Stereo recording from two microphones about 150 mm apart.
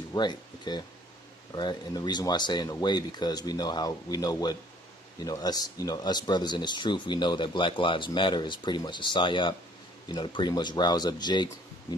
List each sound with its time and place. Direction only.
0.1 s speech: 30° left (ahead or behind)